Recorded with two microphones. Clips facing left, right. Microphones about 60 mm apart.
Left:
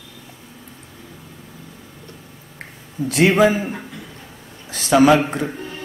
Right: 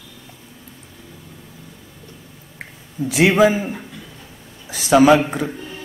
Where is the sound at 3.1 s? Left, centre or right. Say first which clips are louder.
Even; centre.